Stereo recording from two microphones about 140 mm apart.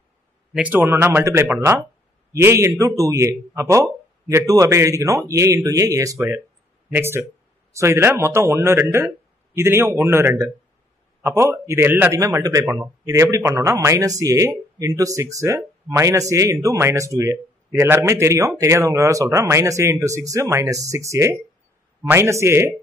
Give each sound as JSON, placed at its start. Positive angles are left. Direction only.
{"t": 0.5, "sound": "speech", "side_deg": -10}